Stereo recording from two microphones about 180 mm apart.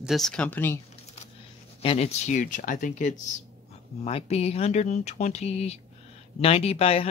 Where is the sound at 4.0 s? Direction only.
35° left (ahead or behind).